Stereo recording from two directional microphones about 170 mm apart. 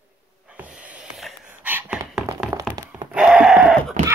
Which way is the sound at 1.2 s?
10° right (ahead or behind).